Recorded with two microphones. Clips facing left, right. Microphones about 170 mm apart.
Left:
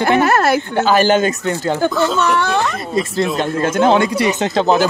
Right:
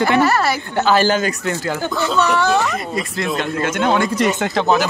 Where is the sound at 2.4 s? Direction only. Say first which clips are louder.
Right 1 dB; 60° left (ahead or behind).